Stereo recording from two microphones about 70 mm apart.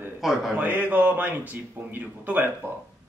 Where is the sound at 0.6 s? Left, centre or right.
Right.